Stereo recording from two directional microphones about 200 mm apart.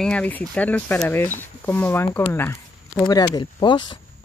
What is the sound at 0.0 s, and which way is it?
Speech, 5° left (ahead or behind).